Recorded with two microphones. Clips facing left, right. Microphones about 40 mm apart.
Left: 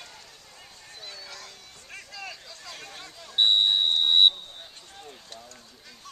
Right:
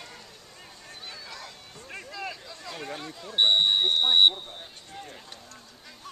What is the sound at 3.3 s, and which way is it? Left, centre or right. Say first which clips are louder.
Speech: even; centre.